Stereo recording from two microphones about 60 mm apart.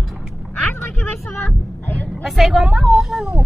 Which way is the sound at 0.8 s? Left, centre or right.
Left.